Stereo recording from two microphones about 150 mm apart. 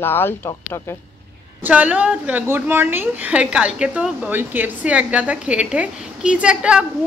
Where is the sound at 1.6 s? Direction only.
10° right (ahead or behind).